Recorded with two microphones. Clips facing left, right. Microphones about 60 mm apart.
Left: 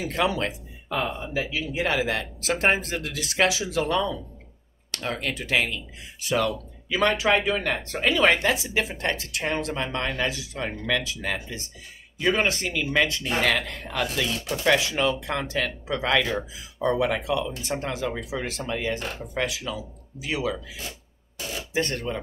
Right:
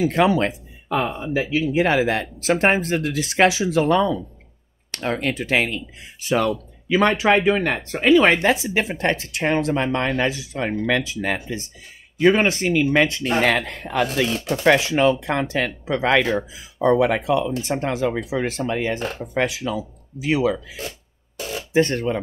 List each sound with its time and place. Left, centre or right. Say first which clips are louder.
0.0 s speech: right 7 dB; right
21.7 s speech: right 8 dB; right